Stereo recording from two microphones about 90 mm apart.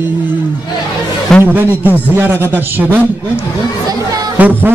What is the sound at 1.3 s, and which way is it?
Speech, 5° left (ahead or behind).